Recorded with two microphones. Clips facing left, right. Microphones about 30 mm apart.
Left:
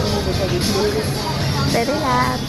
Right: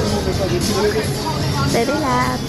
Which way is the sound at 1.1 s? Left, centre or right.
Centre.